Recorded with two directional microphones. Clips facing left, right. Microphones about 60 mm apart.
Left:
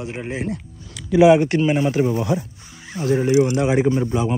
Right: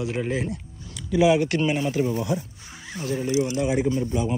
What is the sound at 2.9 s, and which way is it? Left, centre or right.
Speech, left.